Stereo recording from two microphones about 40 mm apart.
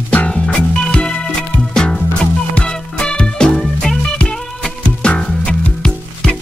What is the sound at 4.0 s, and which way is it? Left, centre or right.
Music, left.